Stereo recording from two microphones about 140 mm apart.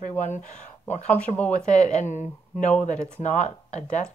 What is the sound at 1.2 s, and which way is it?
Speech, 10° left (ahead or behind).